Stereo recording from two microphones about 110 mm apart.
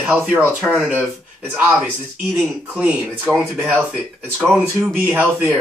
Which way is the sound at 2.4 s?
10° right (ahead or behind).